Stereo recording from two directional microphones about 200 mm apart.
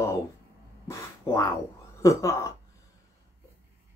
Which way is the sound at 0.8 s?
15° left (ahead or behind).